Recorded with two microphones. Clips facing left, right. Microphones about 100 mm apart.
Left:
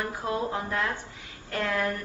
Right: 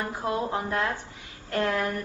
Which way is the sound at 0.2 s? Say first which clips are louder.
Right 3 dB; 25° right (ahead or behind).